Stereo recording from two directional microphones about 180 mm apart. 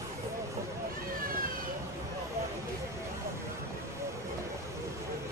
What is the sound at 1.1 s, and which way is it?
Vehicle, 50° right (ahead or behind).